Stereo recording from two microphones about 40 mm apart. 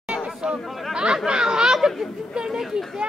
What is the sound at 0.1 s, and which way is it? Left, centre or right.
Chatter, centre.